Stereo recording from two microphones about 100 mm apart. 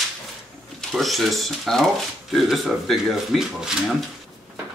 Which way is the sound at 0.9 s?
Centre (ahead or behind).